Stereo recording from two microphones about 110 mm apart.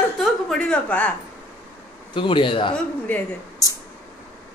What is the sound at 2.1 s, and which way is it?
Speech, 50° left (ahead or behind).